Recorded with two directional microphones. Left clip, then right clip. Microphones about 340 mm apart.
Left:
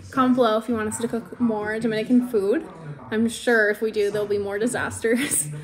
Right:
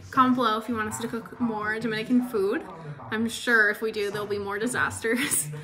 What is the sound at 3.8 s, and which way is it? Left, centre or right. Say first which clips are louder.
Speech: left 6 dB; centre.